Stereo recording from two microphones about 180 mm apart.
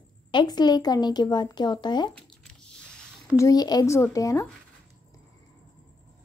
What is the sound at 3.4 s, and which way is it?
Speech, 20° left (ahead or behind).